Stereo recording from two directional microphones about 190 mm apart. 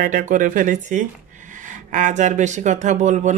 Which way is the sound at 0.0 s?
45° right (ahead or behind).